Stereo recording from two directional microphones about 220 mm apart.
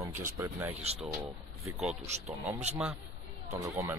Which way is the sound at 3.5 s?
15° right (ahead or behind).